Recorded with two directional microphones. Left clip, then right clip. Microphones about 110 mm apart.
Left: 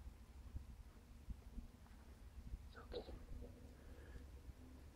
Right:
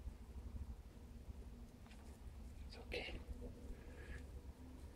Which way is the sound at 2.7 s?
40° right (ahead or behind).